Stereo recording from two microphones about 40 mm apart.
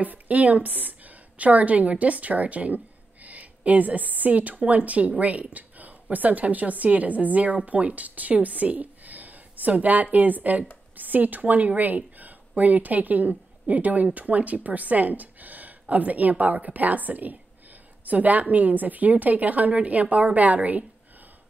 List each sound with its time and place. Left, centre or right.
0.0 s a woman's voice: right